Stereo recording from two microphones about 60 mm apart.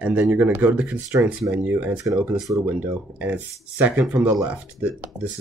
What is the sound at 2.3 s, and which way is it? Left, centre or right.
Speech, right.